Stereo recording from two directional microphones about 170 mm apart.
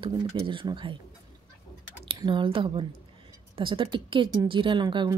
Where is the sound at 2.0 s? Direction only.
30° right (ahead or behind).